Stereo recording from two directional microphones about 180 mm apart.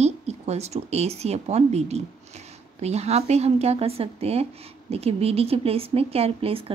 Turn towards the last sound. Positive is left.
turn(degrees=-30)  # may be behind; listen again after turning